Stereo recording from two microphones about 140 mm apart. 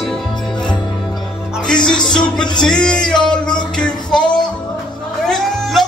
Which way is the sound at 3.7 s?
5° left (ahead or behind).